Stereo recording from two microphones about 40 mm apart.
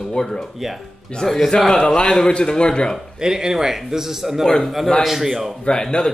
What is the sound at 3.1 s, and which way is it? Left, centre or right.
Speech, centre.